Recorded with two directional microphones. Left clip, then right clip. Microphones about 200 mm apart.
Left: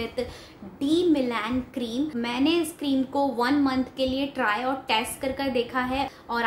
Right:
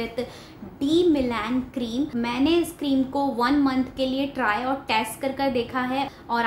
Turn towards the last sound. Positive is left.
turn(degrees=5)  # may be behind; listen again after turning